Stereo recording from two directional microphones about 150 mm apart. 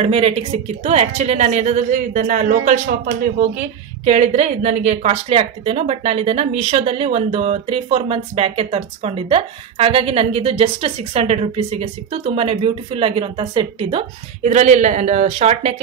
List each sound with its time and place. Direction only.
0.0 s speech: 40° right (ahead or behind); by 3.4 s 65° right (ahead or behind)
4.0 s a woman's voice: 45° right (ahead or behind)
14.4 s speech: 50° right (ahead or behind)